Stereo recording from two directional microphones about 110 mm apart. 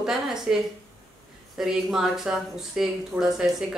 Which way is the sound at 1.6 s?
5° right (ahead or behind).